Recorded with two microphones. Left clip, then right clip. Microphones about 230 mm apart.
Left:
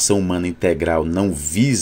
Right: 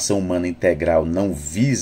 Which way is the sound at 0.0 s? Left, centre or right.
Left.